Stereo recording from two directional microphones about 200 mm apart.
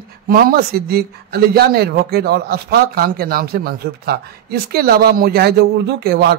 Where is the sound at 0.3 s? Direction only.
50° right (ahead or behind).